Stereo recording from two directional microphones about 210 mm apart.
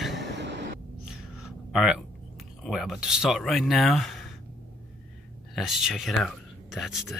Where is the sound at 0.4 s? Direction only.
55° right (ahead or behind).